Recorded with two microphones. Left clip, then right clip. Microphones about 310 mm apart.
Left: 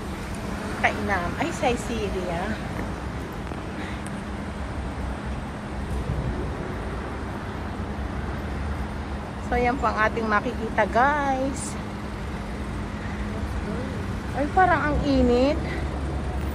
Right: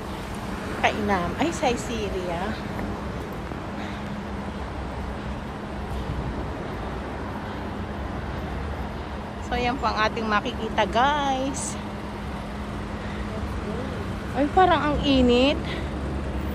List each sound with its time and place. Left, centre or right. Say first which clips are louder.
0.8 s speech: right 1 dB; centre
9.5 s speech: left 2 dB; centre
14.6 s speech: even; centre